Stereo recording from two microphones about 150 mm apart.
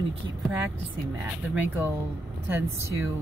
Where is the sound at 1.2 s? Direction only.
10° right (ahead or behind).